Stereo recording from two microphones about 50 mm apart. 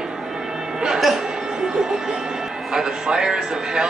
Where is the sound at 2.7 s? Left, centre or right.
Centre.